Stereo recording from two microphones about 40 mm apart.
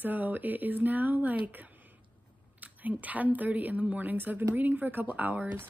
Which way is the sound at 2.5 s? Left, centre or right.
Right.